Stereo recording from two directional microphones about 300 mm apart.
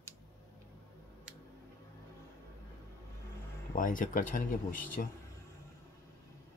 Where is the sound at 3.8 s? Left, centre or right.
Left.